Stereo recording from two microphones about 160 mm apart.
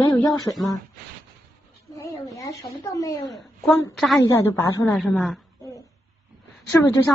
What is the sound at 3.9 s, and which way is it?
Speech, centre (ahead or behind).